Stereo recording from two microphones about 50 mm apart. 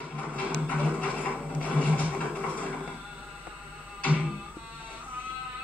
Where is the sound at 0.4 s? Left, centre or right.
Left.